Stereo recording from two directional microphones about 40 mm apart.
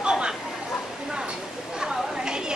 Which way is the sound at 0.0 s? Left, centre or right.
Centre.